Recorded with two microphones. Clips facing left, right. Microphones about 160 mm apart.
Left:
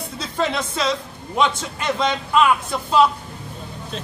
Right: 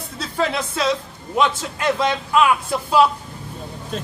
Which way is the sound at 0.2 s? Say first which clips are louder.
Right 1 dB; 5° right (ahead or behind).